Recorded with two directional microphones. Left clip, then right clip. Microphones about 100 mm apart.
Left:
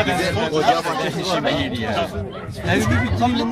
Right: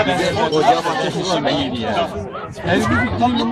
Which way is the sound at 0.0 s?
15° right (ahead or behind).